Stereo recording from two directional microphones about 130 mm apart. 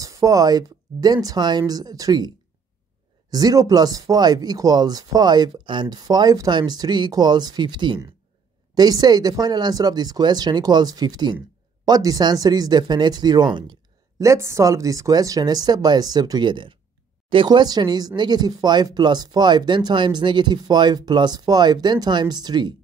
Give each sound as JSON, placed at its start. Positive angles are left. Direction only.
{"t": 0.0, "sound": "speech", "side_deg": -25}
{"t": 14.2, "sound": "speech", "side_deg": -20}